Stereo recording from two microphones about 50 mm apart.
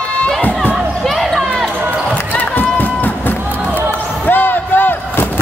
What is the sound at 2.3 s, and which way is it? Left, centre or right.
Run, left.